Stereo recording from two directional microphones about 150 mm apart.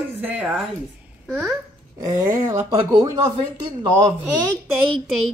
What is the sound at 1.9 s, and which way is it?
Speech, 20° right (ahead or behind).